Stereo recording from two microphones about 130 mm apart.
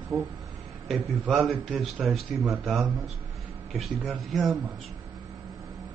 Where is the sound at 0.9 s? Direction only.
Centre (ahead or behind).